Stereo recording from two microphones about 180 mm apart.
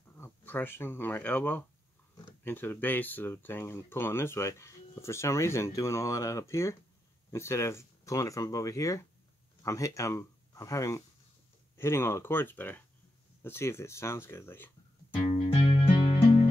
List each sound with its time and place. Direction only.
0.2 s speech: 10° left (ahead or behind)
15.2 s music: 40° left (ahead or behind)